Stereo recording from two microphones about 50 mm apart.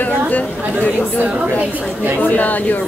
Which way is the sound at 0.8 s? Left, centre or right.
Left.